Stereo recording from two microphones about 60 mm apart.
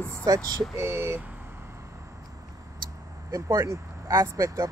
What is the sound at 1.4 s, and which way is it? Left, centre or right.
Vehicle, right.